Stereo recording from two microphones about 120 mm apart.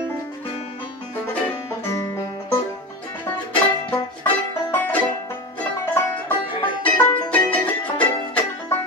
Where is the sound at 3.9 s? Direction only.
15° left (ahead or behind).